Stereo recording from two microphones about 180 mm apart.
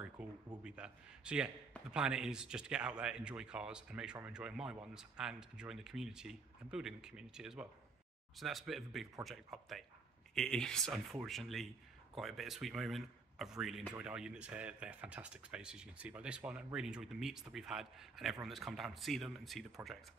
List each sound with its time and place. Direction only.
0.2 s a man's voice: 5° right (ahead or behind)